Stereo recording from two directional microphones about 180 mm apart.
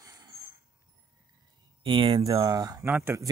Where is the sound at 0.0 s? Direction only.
20° right (ahead or behind).